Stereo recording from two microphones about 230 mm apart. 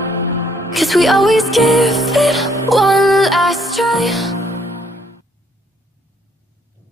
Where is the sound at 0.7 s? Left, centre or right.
Centre.